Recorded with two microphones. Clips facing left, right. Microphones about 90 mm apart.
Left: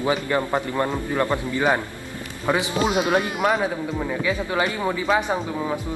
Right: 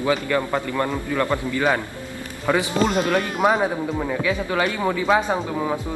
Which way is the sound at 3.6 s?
20° right (ahead or behind).